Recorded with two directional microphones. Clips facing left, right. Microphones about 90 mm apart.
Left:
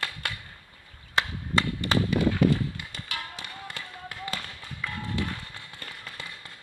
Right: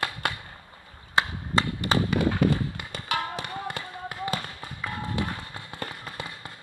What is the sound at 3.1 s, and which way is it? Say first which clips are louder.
Music: right 9 dB; 50° right (ahead or behind).